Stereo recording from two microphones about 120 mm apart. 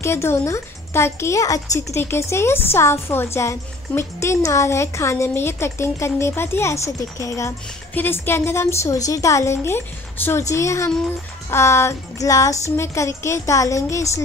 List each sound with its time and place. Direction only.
0.0 s speech: 20° left (ahead or behind)